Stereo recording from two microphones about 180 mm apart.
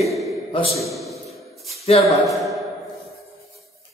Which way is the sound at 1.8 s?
35° left (ahead or behind).